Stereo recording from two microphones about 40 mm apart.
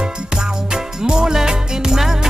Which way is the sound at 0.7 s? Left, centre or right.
Centre.